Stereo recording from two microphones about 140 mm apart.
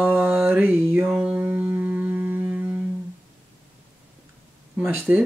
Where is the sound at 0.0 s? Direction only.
15° right (ahead or behind).